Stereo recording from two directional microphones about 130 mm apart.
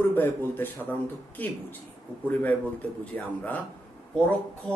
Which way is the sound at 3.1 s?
10° left (ahead or behind).